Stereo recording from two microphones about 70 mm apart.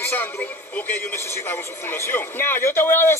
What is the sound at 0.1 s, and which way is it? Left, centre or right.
A man's voice, left.